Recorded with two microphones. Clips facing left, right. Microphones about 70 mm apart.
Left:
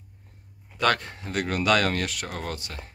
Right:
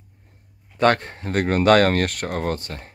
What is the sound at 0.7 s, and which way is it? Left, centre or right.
Speech, right.